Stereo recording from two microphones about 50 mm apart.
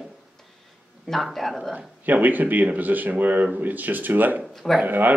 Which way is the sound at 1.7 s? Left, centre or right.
Right.